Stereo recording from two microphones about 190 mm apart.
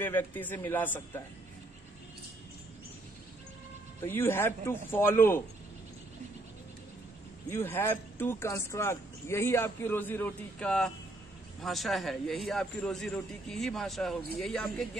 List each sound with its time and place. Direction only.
0.0 s speech: 10° left (ahead or behind)
4.0 s speech: 10° left (ahead or behind)
7.4 s a man's voice: 15° left (ahead or behind)